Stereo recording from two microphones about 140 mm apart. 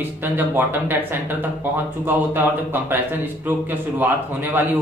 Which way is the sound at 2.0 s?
15° right (ahead or behind).